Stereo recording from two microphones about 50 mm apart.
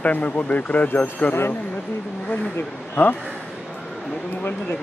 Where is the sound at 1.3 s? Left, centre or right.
Left.